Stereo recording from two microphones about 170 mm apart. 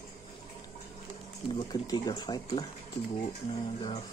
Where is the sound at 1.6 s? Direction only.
25° left (ahead or behind).